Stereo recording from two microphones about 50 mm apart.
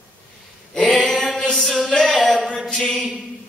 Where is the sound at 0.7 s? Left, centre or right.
Centre.